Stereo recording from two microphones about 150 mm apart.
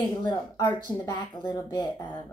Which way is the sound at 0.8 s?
30° left (ahead or behind).